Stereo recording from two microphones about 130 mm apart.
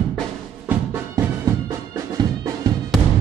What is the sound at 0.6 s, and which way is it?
Music, 15° right (ahead or behind).